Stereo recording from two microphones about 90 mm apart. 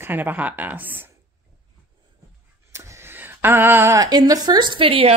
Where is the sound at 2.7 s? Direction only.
30° right (ahead or behind).